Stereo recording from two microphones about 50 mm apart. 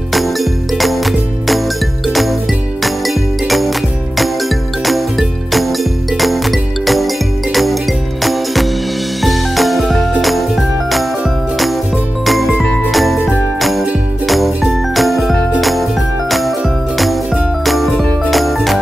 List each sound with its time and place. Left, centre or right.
0.1 s music: centre
3.4 s music: centre
12.3 s music: centre
12.9 s jingle: centre
13.6 s music: centre